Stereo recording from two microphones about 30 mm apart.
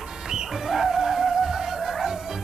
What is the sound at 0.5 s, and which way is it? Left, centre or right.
Music, centre.